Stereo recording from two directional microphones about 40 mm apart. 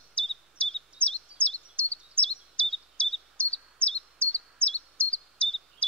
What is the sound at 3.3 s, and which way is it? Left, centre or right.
Bird vocalization, left.